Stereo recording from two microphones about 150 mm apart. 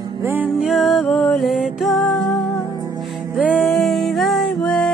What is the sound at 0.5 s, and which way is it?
Music, centre (ahead or behind).